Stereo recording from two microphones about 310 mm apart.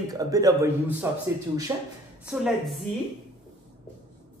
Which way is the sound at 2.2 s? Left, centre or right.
Centre.